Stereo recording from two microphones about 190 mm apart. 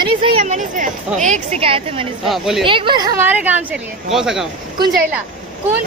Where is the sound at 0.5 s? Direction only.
40° right (ahead or behind).